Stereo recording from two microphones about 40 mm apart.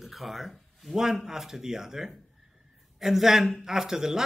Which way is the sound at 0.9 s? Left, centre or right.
Centre.